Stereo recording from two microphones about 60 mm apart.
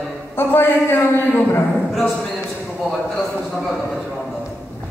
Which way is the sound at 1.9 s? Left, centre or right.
Centre.